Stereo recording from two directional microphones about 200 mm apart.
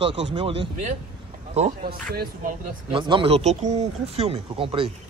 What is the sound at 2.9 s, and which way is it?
Speech, 25° right (ahead or behind).